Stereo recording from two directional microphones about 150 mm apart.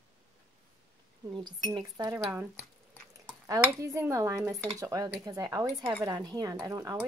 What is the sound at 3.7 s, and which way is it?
A woman's voice, 20° right (ahead or behind).